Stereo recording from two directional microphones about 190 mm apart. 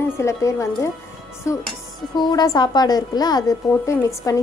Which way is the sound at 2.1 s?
20° left (ahead or behind).